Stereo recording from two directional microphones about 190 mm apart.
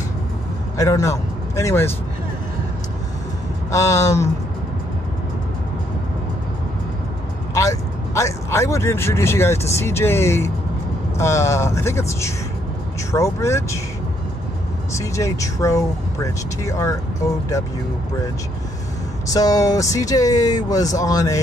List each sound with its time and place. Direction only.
0.7 s speech: 15° left (ahead or behind)
3.7 s speech: 15° left (ahead or behind)
7.5 s speech: 15° left (ahead or behind)
15.0 s speech: 15° left (ahead or behind)
19.3 s speech: 20° left (ahead or behind)